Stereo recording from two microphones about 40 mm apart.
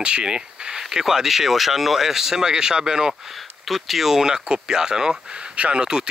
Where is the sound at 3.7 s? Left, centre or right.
Centre.